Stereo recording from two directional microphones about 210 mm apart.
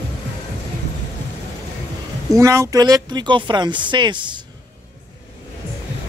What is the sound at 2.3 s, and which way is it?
Speech, 15° right (ahead or behind).